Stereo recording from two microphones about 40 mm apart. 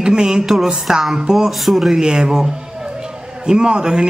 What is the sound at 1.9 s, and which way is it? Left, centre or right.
Speech, centre.